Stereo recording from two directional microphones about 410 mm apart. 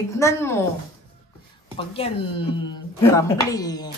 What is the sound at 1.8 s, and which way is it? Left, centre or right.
Speech, centre.